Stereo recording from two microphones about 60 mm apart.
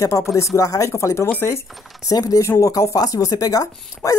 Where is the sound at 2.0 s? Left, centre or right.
Left.